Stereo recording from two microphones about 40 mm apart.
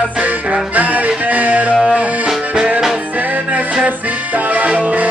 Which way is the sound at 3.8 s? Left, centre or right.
Right.